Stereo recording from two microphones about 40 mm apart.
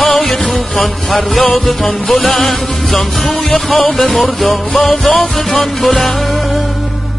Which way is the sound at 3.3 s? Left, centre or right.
Centre.